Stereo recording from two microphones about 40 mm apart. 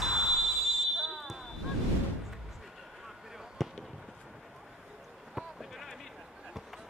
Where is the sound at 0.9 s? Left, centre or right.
Centre.